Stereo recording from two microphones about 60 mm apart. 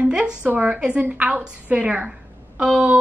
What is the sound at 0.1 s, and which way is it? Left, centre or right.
A woman's voice, centre.